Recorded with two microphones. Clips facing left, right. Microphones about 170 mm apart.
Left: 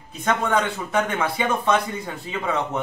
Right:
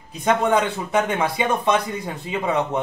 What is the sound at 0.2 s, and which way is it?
A man's voice, 15° right (ahead or behind).